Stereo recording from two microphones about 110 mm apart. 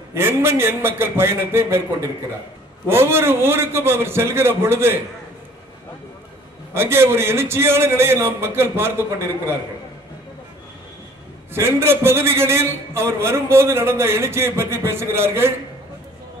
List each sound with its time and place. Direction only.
0.1 s a man's voice: 20° right (ahead or behind)
6.7 s a man's voice: 20° right (ahead or behind)
11.5 s a man's voice: 20° right (ahead or behind)